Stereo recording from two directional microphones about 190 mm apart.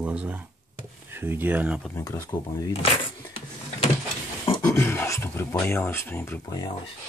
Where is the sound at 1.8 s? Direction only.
15° left (ahead or behind).